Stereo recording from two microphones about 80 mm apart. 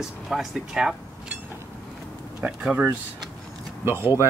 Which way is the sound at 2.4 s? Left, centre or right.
Centre.